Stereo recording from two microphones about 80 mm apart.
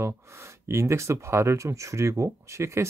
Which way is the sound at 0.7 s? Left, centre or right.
Right.